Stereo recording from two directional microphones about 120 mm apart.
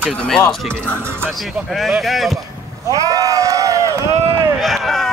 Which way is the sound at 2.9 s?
30° right (ahead or behind).